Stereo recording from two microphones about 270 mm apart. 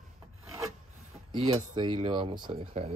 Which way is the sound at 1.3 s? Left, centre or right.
Centre.